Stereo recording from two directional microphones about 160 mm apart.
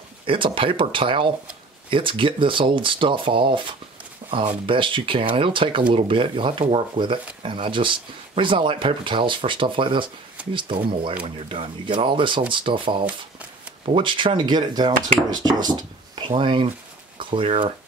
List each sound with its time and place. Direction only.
0.3 s speech: 35° right (ahead or behind)